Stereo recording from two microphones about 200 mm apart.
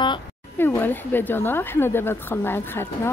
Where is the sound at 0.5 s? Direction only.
10° left (ahead or behind).